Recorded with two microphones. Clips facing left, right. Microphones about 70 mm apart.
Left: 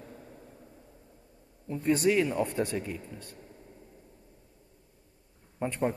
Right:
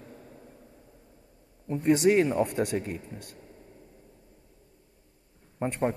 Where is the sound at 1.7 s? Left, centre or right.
Right.